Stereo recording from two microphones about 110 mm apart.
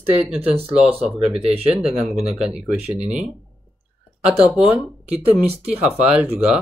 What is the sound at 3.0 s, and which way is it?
Speech, 90° right.